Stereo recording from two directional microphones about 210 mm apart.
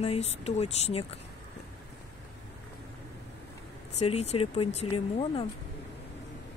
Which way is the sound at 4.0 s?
30° left (ahead or behind).